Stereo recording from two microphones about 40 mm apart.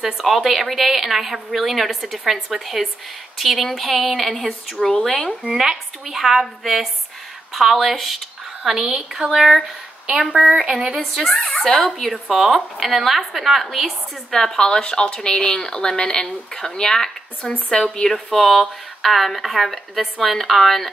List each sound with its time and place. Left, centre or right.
0.0 s a woman's voice: centre
5.4 s a woman's voice: centre
8.6 s a woman's voice: centre
10.3 s speech: right
10.6 s a woman's voice: centre
11.1 s a woman's voice: centre
14.3 s speech: centre
18.1 s a woman's voice: centre